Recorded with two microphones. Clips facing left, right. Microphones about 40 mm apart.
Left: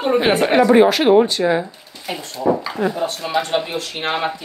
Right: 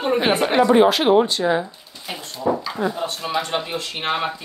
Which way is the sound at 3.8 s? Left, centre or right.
Left.